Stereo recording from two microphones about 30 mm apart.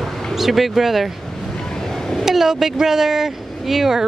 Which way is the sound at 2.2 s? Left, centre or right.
Centre.